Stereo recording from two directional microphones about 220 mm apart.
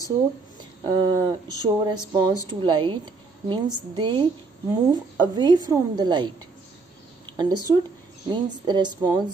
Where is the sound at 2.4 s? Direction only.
20° right (ahead or behind).